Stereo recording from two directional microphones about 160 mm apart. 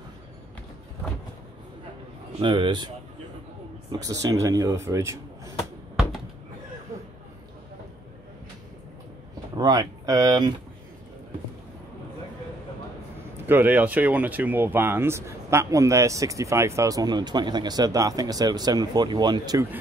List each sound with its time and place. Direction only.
2.4 s speech: 30° right (ahead or behind)
3.9 s speech: 20° right (ahead or behind)
9.6 s speech: 25° right (ahead or behind)
13.5 s speech: 10° right (ahead or behind)